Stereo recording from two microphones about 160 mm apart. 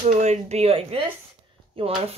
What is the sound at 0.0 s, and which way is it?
Speech, 45° right (ahead or behind).